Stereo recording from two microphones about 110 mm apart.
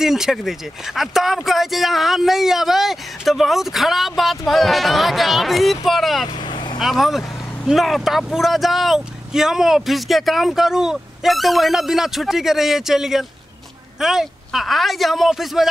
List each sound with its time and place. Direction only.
0.0 s speech: 5° right (ahead or behind)
6.5 s vehicle: 45° left (ahead or behind)
6.8 s speech: centre (ahead or behind)